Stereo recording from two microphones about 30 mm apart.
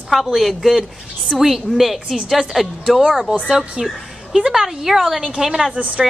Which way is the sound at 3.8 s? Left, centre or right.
Right.